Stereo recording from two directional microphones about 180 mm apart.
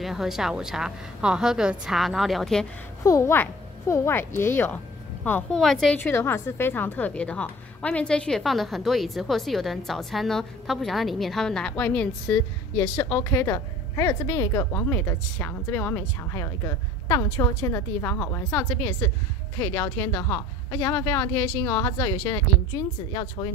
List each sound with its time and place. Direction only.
0.0 s a woman's voice: centre (ahead or behind)
3.0 s a woman's voice: 15° left (ahead or behind)
5.9 s a woman's voice: 10° left (ahead or behind)